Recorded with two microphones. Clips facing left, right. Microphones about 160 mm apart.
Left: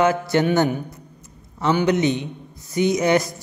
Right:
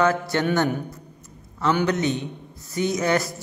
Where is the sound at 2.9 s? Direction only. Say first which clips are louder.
Left 3 dB; 20° left (ahead or behind).